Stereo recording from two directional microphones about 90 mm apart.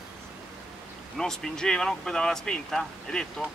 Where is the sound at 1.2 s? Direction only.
5° left (ahead or behind).